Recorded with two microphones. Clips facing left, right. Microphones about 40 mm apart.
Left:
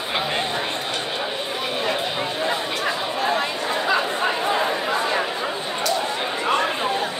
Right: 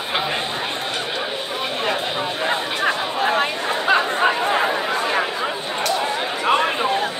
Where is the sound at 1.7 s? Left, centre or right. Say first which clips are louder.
Right 1 dB; right.